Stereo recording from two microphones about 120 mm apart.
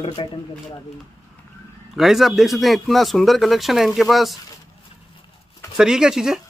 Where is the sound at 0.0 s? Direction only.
40° left (ahead or behind).